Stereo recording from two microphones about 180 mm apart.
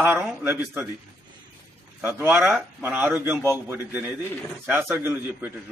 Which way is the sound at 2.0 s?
10° right (ahead or behind).